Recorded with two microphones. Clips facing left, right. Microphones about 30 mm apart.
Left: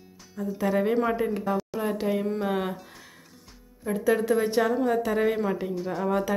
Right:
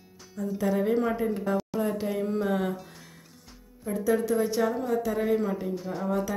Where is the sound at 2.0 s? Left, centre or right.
Centre.